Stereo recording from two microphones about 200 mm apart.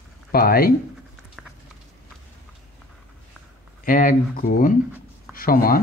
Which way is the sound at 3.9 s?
45° left (ahead or behind).